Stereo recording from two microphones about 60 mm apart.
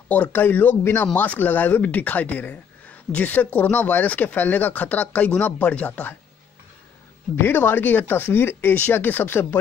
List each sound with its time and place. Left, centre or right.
0.1 s speech: left
7.3 s speech: left